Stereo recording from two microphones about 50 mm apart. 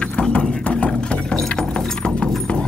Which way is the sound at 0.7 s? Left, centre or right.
Left.